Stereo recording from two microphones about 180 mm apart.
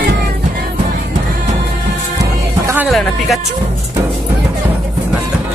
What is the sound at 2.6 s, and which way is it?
Vehicle, 10° right (ahead or behind).